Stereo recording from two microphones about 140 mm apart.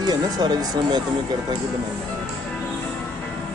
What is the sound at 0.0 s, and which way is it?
Speech, 30° right (ahead or behind).